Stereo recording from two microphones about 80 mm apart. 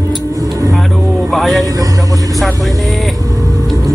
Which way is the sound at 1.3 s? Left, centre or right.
Centre.